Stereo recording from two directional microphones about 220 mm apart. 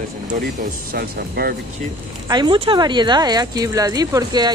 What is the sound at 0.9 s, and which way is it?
Speech, 45° right (ahead or behind).